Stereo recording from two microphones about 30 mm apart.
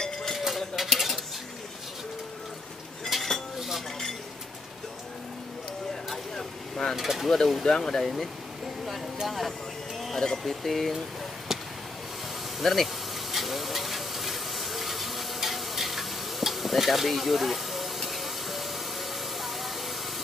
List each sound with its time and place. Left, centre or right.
0.7 s stir: centre
3.1 s cutlery: centre
6.3 s vehicle: centre
7.0 s speech: centre
7.6 s speech: centre
8.8 s vehicle: centre
10.1 s speech: centre
10.4 s speech: centre
12.5 s a sound: centre